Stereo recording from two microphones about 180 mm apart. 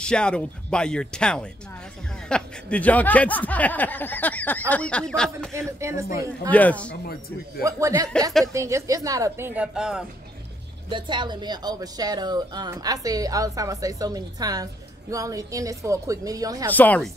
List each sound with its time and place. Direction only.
0.0 s speech: 5° left (ahead or behind)
5.5 s a woman's voice: 15° right (ahead or behind)
6.5 s speech: 10° left (ahead or behind)
6.9 s speech: 55° left (ahead or behind)
7.6 s a woman's voice: 20° right (ahead or behind)
10.9 s speech: 25° right (ahead or behind)
16.7 s speech: 10° left (ahead or behind)